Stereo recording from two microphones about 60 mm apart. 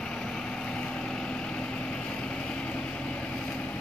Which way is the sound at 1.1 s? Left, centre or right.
Centre.